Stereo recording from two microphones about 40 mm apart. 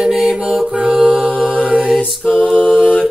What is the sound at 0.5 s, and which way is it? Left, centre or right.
Music, centre.